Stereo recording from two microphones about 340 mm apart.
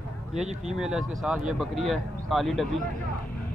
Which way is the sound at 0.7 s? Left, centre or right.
Centre.